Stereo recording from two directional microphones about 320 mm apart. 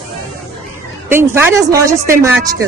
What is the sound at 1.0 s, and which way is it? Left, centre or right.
Speech, centre.